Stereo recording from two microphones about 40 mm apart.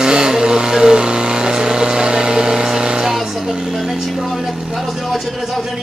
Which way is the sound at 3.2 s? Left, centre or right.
Centre.